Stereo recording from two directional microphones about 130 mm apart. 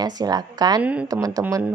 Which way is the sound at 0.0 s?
30° right (ahead or behind).